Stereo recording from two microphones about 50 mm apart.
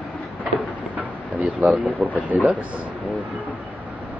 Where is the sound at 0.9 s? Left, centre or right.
Right.